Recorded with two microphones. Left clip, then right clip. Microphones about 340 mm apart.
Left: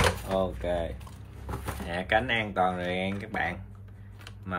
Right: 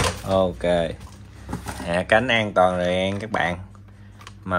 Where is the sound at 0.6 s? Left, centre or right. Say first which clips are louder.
Right 9 dB; right.